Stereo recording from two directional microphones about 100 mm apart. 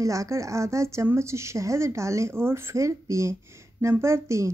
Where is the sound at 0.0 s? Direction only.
30° right (ahead or behind).